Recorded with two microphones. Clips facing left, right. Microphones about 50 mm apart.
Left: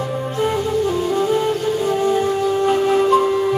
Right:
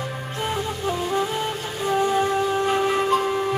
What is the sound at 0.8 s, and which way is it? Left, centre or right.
Music, centre.